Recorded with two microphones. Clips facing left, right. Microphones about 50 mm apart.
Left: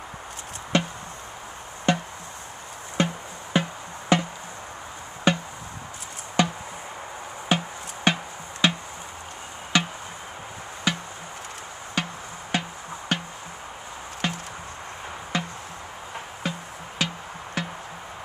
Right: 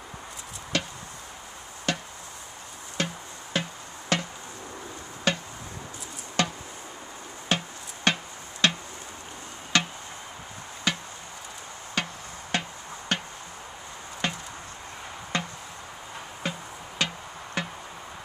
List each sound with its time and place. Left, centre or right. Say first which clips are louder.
0.7 s chop: left 6 dB; left
3.0 s music: left 6 dB; left
4.1 s a sound: left 6 dB; centre
5.3 s music: left 4 dB; centre
6.4 s a sound: left 4 dB; centre
7.4 s music: left 3 dB; centre
9.7 s tick-tock: left 2 dB; centre
10.9 s chop: left 2 dB; centre
12.0 s music: left 2 dB; centre
14.2 s chop: left 1 dB; centre
15.3 s music: left 1 dB; centre